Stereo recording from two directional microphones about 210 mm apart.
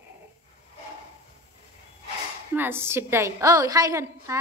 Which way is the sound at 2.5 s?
10° right (ahead or behind).